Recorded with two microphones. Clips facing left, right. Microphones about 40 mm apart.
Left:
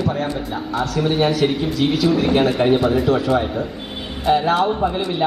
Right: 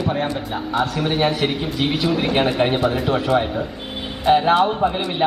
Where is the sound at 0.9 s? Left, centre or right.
Centre.